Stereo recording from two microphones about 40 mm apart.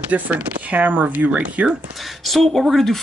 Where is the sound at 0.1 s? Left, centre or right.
Right.